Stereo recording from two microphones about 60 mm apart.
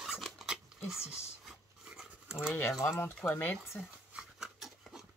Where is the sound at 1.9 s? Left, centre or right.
Centre.